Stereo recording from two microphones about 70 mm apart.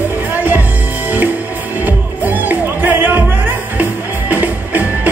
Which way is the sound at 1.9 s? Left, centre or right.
Right.